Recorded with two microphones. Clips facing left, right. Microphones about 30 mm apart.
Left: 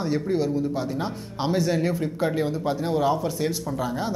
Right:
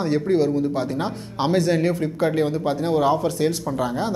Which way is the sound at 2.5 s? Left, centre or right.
Right.